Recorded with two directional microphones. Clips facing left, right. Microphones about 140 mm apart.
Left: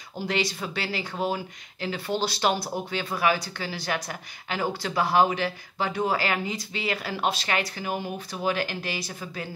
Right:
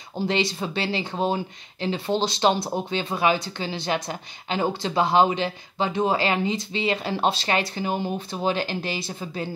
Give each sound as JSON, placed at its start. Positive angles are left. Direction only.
{"t": 0.2, "sound": "speech", "side_deg": -25}